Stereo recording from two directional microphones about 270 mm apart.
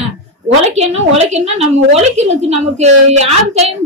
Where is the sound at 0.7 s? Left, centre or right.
Right.